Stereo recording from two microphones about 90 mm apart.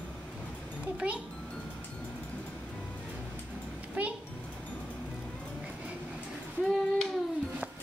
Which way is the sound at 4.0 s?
15° right (ahead or behind).